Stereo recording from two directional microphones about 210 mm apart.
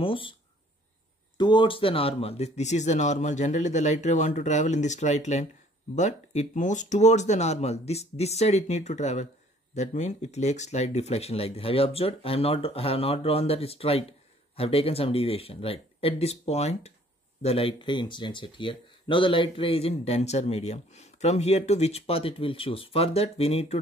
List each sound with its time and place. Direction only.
0.0 s speech: 25° left (ahead or behind)
1.4 s speech: 20° left (ahead or behind)